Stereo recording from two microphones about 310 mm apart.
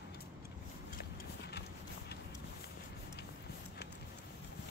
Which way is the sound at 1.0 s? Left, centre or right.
Left.